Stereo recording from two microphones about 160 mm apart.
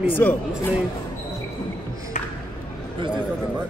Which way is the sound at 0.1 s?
10° left (ahead or behind).